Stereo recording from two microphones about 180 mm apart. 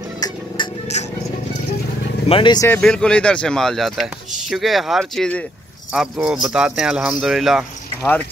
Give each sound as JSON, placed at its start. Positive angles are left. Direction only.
{"t": 0.6, "sound": "music", "side_deg": 25}
{"t": 0.9, "sound": "speech", "side_deg": 40}
{"t": 2.2, "sound": "speech", "side_deg": 30}
{"t": 2.7, "sound": "speech", "side_deg": 5}